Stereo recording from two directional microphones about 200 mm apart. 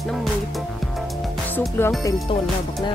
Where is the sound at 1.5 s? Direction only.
10° left (ahead or behind).